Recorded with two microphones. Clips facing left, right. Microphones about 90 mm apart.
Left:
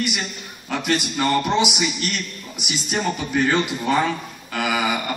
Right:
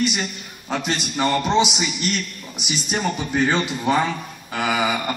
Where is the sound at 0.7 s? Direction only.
20° right (ahead or behind).